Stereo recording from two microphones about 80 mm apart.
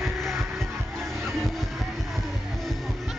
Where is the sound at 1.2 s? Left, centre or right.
Centre.